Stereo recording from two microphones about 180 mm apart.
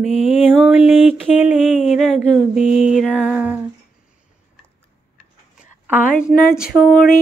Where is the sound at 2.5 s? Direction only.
35° left (ahead or behind).